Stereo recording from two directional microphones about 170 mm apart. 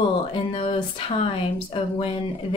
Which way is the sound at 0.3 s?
35° left (ahead or behind).